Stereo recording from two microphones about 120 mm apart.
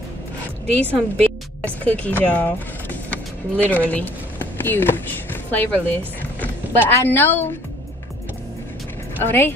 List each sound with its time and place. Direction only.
0.9 s speech: 10° left (ahead or behind)
9.2 s speech: 20° left (ahead or behind)